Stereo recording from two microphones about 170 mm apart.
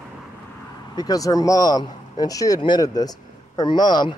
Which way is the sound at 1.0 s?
20° left (ahead or behind).